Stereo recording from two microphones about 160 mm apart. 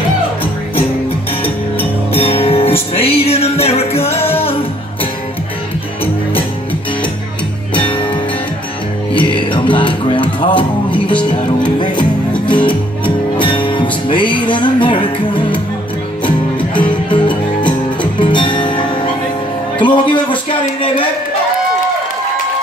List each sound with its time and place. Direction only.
2.1 s music: 40° left (ahead or behind)
7.7 s music: 30° left (ahead or behind)
20.8 s a sound: 35° left (ahead or behind)